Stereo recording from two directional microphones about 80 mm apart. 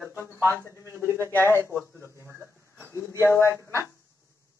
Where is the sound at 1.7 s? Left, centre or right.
Centre.